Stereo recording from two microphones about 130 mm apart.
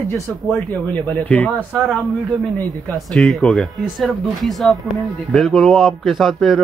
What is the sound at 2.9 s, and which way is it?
Speech, centre (ahead or behind).